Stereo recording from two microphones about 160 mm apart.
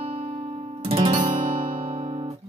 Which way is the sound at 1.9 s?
40° right (ahead or behind).